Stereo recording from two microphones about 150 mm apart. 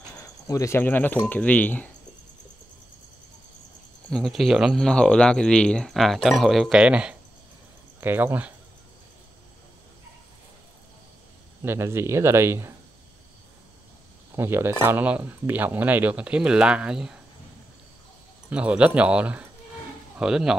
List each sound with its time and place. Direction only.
0.5 s speech: 20° left (ahead or behind)
4.1 s speech: centre (ahead or behind)
11.6 s speech: 15° right (ahead or behind)
14.3 s speech: 15° right (ahead or behind)
18.5 s speech: 10° right (ahead or behind)